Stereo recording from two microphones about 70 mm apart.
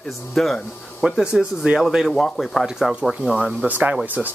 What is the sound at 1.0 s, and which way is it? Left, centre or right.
Speech, centre.